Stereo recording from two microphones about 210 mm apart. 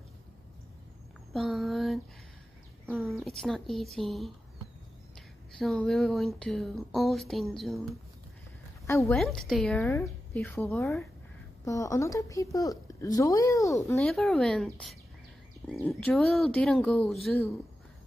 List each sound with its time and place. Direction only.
1.3 s speech: centre (ahead or behind)
5.6 s speech: centre (ahead or behind)
8.8 s a woman's voice: 15° left (ahead or behind)
9.1 s a woman's voice: centre (ahead or behind)
13.8 s speech: 5° left (ahead or behind)